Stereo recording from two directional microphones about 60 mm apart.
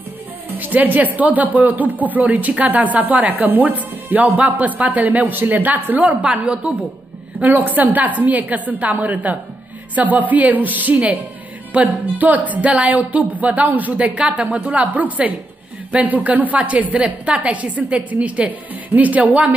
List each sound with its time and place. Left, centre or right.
0.6 s speech: right
7.3 s speech: right